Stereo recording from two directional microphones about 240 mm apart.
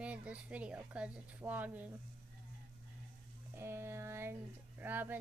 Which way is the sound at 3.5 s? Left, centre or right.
Centre.